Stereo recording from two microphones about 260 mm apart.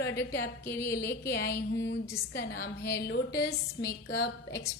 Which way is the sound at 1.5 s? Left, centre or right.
Left.